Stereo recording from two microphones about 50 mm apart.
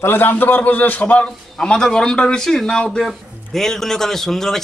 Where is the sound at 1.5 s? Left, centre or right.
Centre.